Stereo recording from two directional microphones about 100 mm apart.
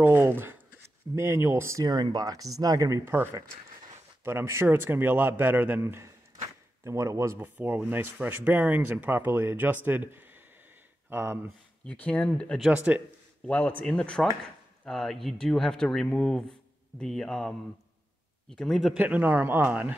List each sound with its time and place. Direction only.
0.0 s speech: 20° right (ahead or behind)
1.9 s speech: 40° right (ahead or behind)
4.2 s speech: 25° right (ahead or behind)
11.8 s speech: 10° left (ahead or behind)
12.7 s speech: 15° right (ahead or behind)
13.5 s speech: 10° left (ahead or behind)
18.9 s speech: 15° right (ahead or behind)